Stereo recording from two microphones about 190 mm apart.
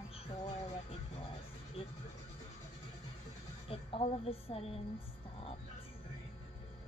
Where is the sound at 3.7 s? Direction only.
30° left (ahead or behind).